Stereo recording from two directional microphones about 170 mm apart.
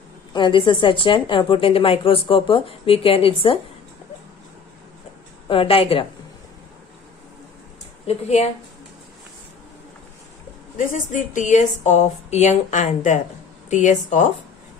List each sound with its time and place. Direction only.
0.3 s a woman's voice: 30° left (ahead or behind)
5.5 s a woman's voice: 35° left (ahead or behind)
8.1 s a woman's voice: 40° left (ahead or behind)
10.8 s speech: 50° left (ahead or behind)